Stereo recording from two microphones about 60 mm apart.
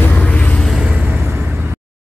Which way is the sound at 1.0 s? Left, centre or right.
Right.